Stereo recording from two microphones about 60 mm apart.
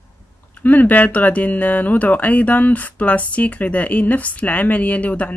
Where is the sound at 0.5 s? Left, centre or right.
Left.